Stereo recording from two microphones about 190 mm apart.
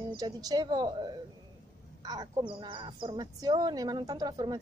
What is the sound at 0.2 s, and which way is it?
Speech, 20° right (ahead or behind).